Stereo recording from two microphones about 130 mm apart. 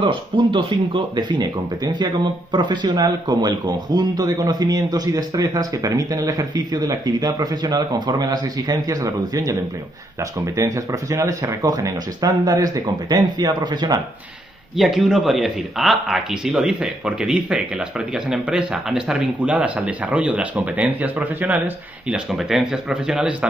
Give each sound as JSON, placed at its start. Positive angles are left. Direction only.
{"t": 0.0, "sound": "speech", "side_deg": -40}
{"t": 14.8, "sound": "speech", "side_deg": 0}